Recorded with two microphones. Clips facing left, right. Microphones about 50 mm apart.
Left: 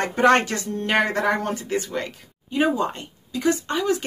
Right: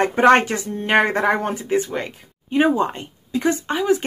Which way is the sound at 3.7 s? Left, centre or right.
Centre.